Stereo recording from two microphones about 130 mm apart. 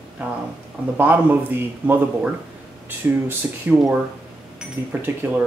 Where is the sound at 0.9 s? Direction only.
15° right (ahead or behind).